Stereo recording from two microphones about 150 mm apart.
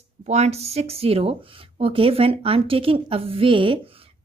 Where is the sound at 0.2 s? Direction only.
45° right (ahead or behind).